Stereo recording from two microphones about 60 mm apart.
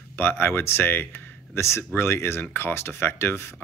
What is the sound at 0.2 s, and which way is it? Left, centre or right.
Speech, left.